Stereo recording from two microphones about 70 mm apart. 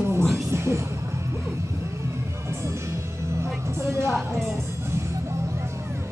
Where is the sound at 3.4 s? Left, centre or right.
Right.